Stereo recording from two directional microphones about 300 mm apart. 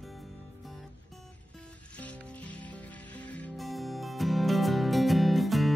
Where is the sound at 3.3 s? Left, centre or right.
Centre.